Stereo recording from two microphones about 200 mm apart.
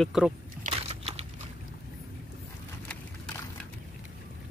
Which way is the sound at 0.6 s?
30° right (ahead or behind).